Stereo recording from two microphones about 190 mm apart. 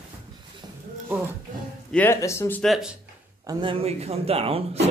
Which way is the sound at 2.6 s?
Centre (ahead or behind).